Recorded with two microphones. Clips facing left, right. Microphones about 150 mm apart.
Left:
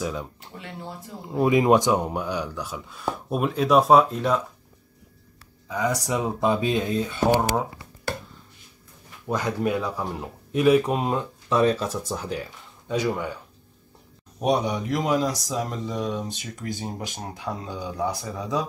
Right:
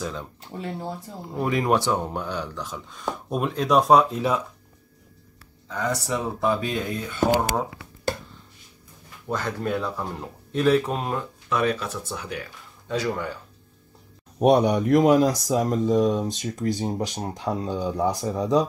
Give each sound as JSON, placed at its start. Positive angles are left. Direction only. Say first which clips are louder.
{"t": 0.0, "sound": "speech", "louder": "left 2 dB", "side_deg": 10}
{"t": 0.5, "sound": "speech", "louder": "right 8 dB", "side_deg": -35}
{"t": 1.3, "sound": "speech", "louder": "left 4 dB", "side_deg": 20}
{"t": 5.7, "sound": "speech", "louder": "left 1 dB", "side_deg": 10}
{"t": 9.3, "sound": "speech", "louder": "left 2 dB", "side_deg": 15}
{"t": 11.4, "sound": "speech", "louder": "left 4 dB", "side_deg": 30}
{"t": 12.8, "sound": "speech", "louder": "left 1 dB", "side_deg": 10}
{"t": 14.4, "sound": "speech", "louder": "right 5 dB", "side_deg": -55}